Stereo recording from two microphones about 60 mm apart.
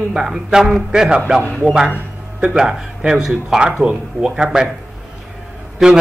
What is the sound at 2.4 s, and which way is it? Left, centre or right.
A man's voice, centre.